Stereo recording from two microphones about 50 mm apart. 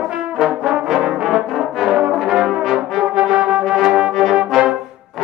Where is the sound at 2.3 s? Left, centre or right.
Centre.